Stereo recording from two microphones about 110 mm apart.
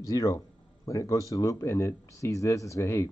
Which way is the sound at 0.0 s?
30° left (ahead or behind).